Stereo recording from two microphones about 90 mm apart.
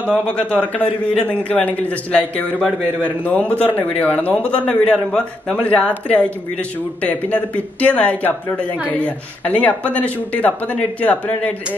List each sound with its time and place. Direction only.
0.3 s speech: 15° left (ahead or behind)